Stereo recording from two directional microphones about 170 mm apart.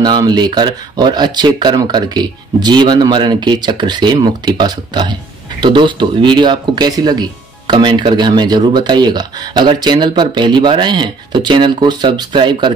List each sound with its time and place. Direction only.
0.0 s speech: 25° right (ahead or behind)